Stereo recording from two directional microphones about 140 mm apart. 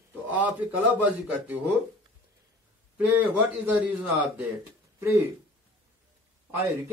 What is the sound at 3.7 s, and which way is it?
A man's voice, 10° right (ahead or behind).